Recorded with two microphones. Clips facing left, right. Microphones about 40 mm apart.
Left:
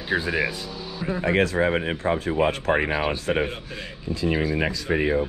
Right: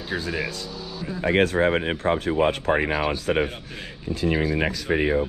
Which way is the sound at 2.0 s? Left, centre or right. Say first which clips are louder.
Right 1 dB; right.